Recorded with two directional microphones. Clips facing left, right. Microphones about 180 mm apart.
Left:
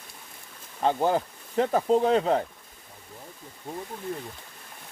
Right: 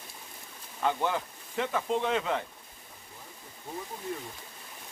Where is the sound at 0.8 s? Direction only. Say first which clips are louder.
Left 6 dB; 35° left (ahead or behind).